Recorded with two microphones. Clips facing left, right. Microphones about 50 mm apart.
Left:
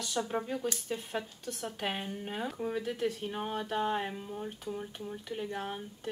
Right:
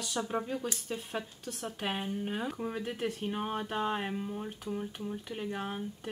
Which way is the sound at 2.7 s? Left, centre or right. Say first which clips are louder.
Left 2 dB; centre.